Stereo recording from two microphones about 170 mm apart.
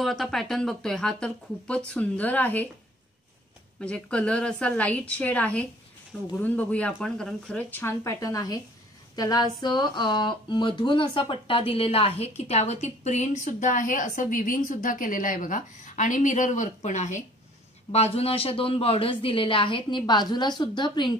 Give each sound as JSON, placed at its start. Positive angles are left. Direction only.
{"t": 0.0, "sound": "a woman's voice", "side_deg": 0}
{"t": 3.8, "sound": "a woman's voice", "side_deg": 5}